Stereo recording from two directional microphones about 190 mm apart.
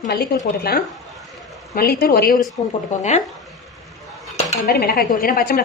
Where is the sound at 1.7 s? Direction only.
55° left (ahead or behind).